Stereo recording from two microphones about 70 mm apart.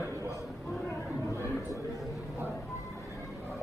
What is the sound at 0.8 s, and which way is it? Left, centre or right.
Speech, left.